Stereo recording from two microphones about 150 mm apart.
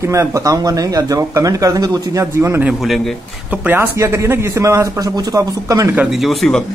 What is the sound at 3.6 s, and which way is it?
Speech, 15° right (ahead or behind).